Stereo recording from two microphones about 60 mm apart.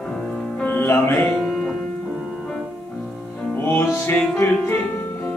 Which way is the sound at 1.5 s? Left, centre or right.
Centre.